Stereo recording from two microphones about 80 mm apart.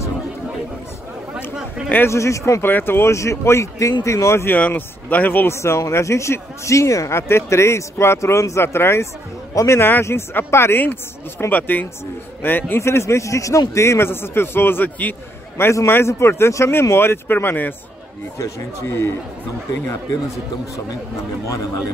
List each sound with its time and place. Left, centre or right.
1.3 s chatter: centre
2.0 s speech: left
2.6 s speech: left
4.5 s speech: left
5.6 s speech: left
15.5 s speech: left
18.9 s speech: left